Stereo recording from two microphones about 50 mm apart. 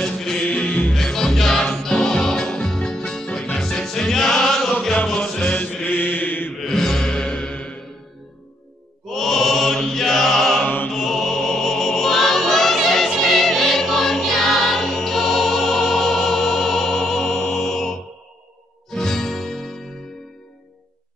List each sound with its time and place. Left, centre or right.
0.0 s music: centre
0.4 s music: left
0.9 s music: centre
5.9 s mantra: left
6.6 s mantra: centre
7.2 s music: left
9.1 s chant: centre
10.6 s music: left
10.9 s music: centre